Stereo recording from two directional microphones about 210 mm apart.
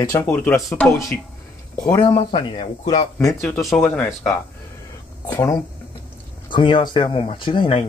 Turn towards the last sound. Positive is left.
turn(degrees=25)  # may be behind; listen again after turning